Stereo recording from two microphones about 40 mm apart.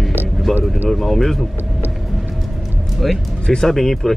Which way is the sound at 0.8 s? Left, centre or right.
Centre.